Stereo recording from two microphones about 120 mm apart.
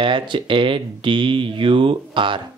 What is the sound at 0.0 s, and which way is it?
Speech, 45° right (ahead or behind).